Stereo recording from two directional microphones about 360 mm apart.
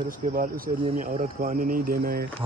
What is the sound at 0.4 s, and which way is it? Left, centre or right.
Speech, right.